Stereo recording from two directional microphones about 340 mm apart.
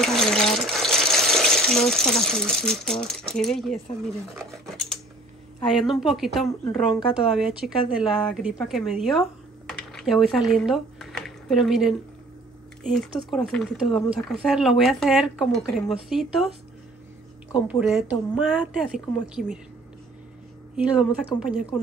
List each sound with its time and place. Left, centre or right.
0.0 s water: centre
3.3 s speech: centre
5.7 s speech: centre
6.6 s speech: centre
7.3 s speech: centre
17.6 s speech: centre
20.7 s speech: centre